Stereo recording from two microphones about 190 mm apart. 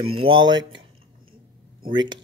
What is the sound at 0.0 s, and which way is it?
Speech, 30° right (ahead or behind).